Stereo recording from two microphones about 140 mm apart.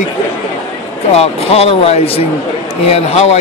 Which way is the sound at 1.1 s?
45° left (ahead or behind).